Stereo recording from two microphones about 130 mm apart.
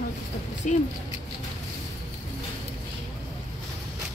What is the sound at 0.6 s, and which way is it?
Speech, 70° left (ahead or behind).